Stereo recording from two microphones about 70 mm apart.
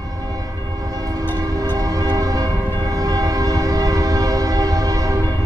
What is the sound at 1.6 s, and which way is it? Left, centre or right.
Train, right.